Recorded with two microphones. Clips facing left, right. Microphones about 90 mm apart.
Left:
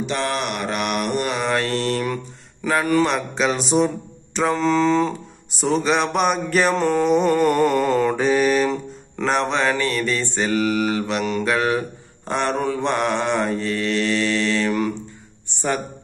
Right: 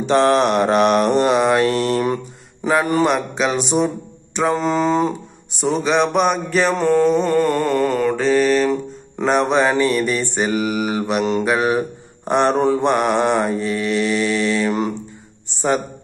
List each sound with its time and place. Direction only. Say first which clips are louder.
0.0 s mantra: right 9 dB; 35° right (ahead or behind); by 3.1 s 20° right (ahead or behind)
3.1 s speech: right 2 dB; 5° right (ahead or behind)
4.6 s mantra: left 2 dB; 20° right (ahead or behind)
5.5 s a sound: right 1 dB; centre (ahead or behind)
7.0 s mantra: even; 15° left (ahead or behind)
9.3 s mantra: right 4 dB; 10° right (ahead or behind)
12.8 s mantra: right 4 dB; 15° right (ahead or behind)